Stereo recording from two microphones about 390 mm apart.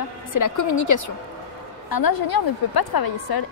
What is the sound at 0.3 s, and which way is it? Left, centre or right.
Speech, left.